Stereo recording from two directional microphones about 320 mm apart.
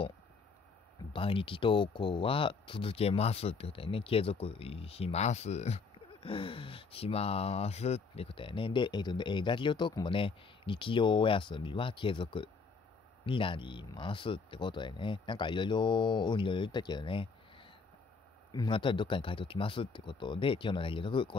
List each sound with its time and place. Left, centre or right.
1.1 s speech: centre